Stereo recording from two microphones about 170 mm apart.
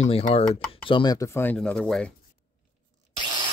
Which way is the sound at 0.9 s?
25° left (ahead or behind).